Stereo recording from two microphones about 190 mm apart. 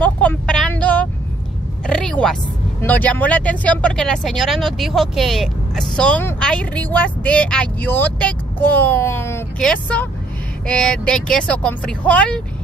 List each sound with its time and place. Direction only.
0.0 s vehicle: 5° left (ahead or behind)
1.9 s a sound: 5° left (ahead or behind)
2.8 s speech: 10° left (ahead or behind)